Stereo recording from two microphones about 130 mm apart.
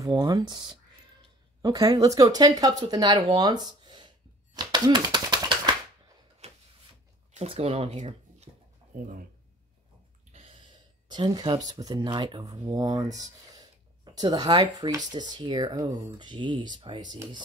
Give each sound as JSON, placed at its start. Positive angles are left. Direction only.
{"t": 0.0, "sound": "speech", "side_deg": -30}
{"t": 3.3, "sound": "a sound", "side_deg": -30}
{"t": 4.6, "sound": "typewriter", "side_deg": -35}
{"t": 6.4, "sound": "a sound", "side_deg": -55}
{"t": 7.3, "sound": "speech", "side_deg": -50}
{"t": 8.9, "sound": "speech", "side_deg": -90}
{"t": 11.1, "sound": "speech", "side_deg": -35}